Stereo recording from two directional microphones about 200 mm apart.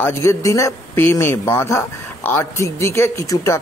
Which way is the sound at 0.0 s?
15° left (ahead or behind).